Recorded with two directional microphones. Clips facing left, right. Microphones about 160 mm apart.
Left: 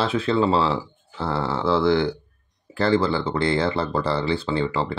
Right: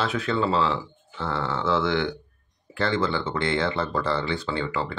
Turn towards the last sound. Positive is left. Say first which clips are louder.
# left 4 dB
turn(degrees=30)  # may be behind; listen again after turning